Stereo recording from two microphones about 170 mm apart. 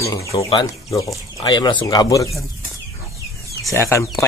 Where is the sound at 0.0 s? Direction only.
20° left (ahead or behind).